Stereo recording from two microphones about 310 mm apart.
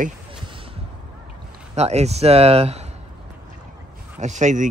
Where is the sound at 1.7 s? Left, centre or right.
Right.